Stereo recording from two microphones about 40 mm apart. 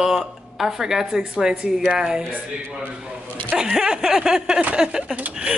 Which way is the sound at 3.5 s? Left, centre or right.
Right.